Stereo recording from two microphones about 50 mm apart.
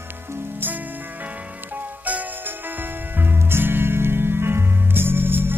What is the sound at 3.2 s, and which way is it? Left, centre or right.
Music, right.